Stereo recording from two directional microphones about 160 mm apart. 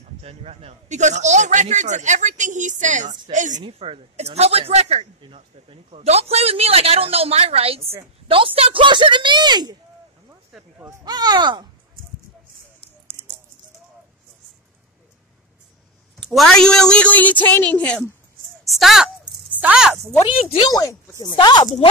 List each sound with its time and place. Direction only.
0.0 s a man's voice: 40° right (ahead or behind)
3.5 s speech: 35° right (ahead or behind)
10.8 s speech: 20° right (ahead or behind)
16.2 s a woman's voice: centre (ahead or behind)
20.7 s speech: 20° left (ahead or behind)